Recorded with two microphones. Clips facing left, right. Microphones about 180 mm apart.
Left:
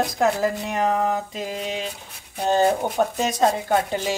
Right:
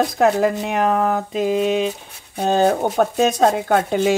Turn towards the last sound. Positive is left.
turn(degrees=-55)  # may be behind; listen again after turning